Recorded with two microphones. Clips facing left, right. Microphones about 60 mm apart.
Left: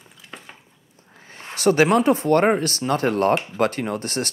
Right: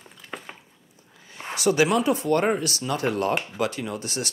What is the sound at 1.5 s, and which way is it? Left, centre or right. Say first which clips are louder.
Speech: left 4 dB; left.